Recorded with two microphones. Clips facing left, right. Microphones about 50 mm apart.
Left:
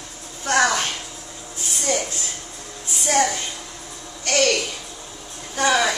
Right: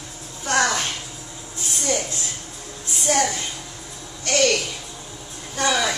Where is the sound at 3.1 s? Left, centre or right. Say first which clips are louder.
Left 1 dB; centre.